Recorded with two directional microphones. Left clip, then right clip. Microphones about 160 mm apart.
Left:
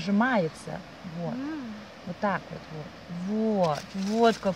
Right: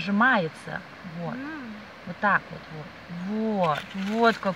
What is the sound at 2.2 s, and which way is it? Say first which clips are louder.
Speech: right 6 dB; 5° left (ahead or behind).